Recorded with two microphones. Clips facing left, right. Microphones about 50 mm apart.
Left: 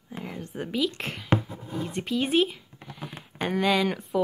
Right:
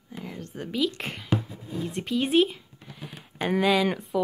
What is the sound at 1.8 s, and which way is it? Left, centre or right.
Speech, centre.